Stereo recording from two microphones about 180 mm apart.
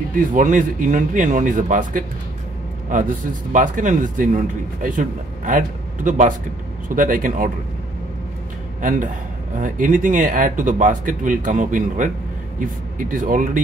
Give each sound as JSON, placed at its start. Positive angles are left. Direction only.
{"t": 0.1, "sound": "a man's voice", "side_deg": -45}
{"t": 3.5, "sound": "a man's voice", "side_deg": -45}
{"t": 8.8, "sound": "a man's voice", "side_deg": -45}